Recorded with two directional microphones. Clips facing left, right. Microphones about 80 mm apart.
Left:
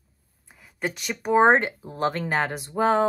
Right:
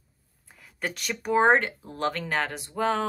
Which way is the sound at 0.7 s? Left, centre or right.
Centre.